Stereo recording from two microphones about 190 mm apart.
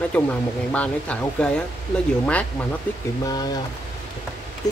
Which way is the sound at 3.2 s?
20° left (ahead or behind).